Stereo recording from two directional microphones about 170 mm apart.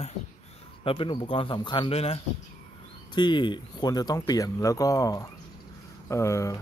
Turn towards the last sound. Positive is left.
turn(degrees=15)  # may be behind; listen again after turning